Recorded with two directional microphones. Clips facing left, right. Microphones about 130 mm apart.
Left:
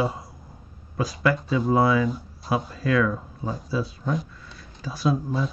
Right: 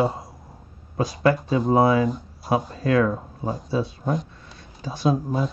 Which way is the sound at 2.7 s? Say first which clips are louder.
Right 2 dB; 35° right (ahead or behind).